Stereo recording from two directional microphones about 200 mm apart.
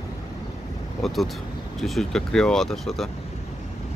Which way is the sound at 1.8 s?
Centre (ahead or behind).